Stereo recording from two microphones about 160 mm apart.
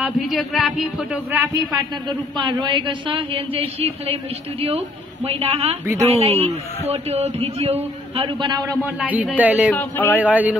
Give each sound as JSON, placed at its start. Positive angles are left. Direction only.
{"t": 0.0, "sound": "speech", "side_deg": 0}
{"t": 1.3, "sound": "speech", "side_deg": -15}
{"t": 2.0, "sound": "a man's voice", "side_deg": -30}
{"t": 8.8, "sound": "speech", "side_deg": -10}
{"t": 9.7, "sound": "speech", "side_deg": 10}
{"t": 10.2, "sound": "speech", "side_deg": -10}